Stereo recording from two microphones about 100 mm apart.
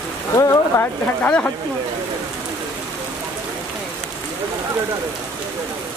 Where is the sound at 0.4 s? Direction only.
25° left (ahead or behind).